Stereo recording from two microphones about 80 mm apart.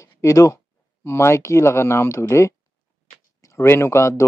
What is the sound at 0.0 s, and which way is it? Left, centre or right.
Speech, left.